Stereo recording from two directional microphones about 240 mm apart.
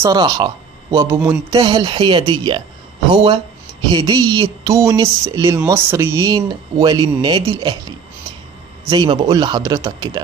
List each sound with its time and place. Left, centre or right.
0.0 s speech: centre
3.9 s speech: centre
8.8 s speech: centre